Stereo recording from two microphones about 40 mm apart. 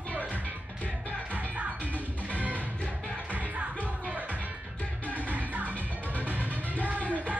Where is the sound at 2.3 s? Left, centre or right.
Right.